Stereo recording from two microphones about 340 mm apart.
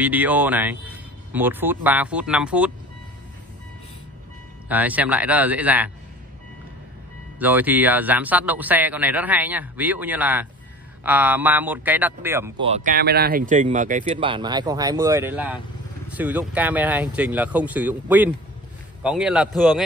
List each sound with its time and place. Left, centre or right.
0.0 s speech: centre
4.6 s speech: centre
7.3 s speech: centre